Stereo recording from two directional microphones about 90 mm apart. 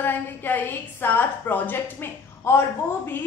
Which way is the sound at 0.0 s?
20° left (ahead or behind).